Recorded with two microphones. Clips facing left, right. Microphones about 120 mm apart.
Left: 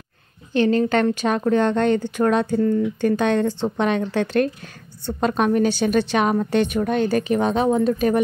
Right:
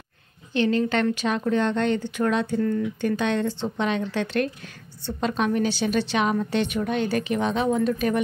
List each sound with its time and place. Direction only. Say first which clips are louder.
0.5 s a woman's voice: left 4 dB; 45° left (ahead or behind)